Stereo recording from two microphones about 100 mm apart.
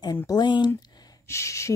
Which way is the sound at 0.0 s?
40° left (ahead or behind).